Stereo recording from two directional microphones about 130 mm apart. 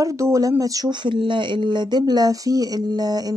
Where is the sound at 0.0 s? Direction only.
25° right (ahead or behind).